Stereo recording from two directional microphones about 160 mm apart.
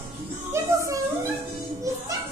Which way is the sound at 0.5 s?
20° right (ahead or behind).